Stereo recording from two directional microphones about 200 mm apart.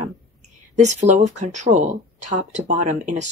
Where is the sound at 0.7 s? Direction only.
35° right (ahead or behind).